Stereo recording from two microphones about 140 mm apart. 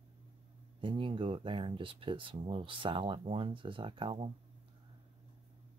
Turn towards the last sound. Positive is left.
turn(degrees=-40)  # may be behind; listen again after turning